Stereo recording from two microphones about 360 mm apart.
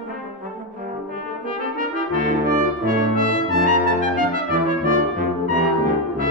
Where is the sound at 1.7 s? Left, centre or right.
Right.